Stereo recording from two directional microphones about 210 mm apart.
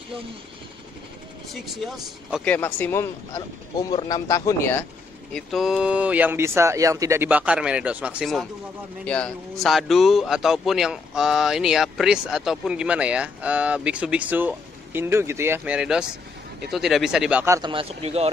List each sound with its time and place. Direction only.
1.5 s speech: centre (ahead or behind)
5.3 s speech: centre (ahead or behind)
17.6 s speech: 25° right (ahead or behind)